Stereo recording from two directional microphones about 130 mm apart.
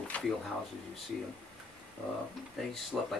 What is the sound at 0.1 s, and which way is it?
Speech, 10° left (ahead or behind).